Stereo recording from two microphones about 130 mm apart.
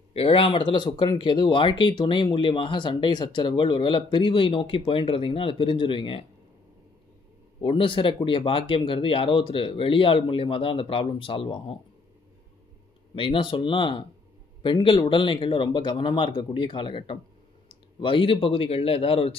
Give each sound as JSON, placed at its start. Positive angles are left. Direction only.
{"t": 0.1, "sound": "speech", "side_deg": 45}
{"t": 7.6, "sound": "speech", "side_deg": 40}
{"t": 13.1, "sound": "a man's voice", "side_deg": 40}